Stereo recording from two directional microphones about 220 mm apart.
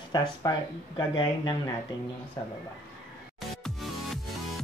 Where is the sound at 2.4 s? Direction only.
15° left (ahead or behind).